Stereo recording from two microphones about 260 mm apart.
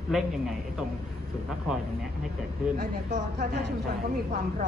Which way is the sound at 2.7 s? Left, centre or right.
Right.